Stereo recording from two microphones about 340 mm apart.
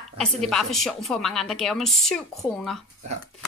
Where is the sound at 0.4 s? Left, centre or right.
Centre.